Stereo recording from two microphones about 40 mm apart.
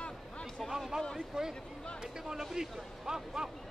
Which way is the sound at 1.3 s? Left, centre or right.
Centre.